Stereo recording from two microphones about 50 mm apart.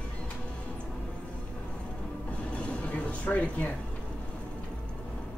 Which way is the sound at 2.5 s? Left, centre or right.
Left.